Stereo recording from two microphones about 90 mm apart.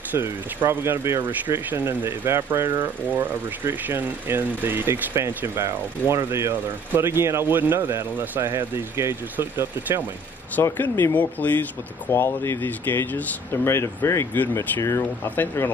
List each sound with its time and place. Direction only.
0.1 s speech: 25° right (ahead or behind)
10.6 s speech: 25° left (ahead or behind)